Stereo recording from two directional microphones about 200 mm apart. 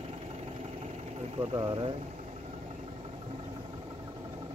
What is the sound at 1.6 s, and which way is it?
Speech, 25° right (ahead or behind).